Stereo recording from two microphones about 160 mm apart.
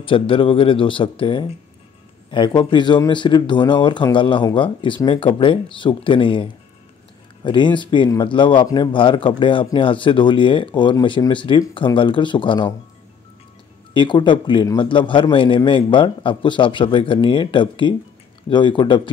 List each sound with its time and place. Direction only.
0.0 s a man's voice: 35° left (ahead or behind)
13.9 s a man's voice: 30° left (ahead or behind)